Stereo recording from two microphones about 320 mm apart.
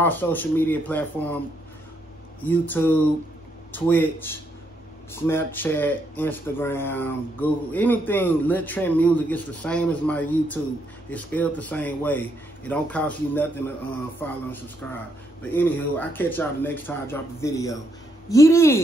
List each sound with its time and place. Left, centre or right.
0.0 s speech: centre
2.4 s speech: centre